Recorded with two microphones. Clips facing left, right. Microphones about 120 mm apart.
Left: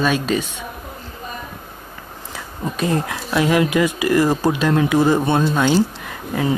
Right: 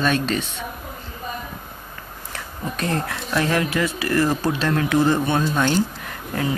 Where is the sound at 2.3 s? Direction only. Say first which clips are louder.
Left 3 dB; 10° left (ahead or behind).